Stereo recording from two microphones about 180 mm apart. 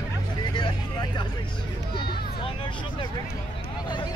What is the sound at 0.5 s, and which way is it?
Vehicle, 25° left (ahead or behind).